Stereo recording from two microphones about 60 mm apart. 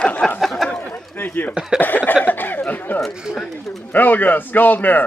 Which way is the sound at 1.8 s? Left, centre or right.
Left.